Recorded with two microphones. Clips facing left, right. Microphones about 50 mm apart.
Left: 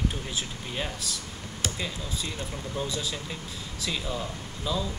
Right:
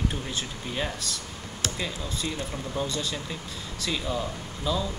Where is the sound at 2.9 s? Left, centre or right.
Centre.